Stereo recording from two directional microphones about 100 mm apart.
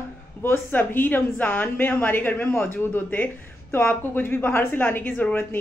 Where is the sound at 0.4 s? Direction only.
20° left (ahead or behind).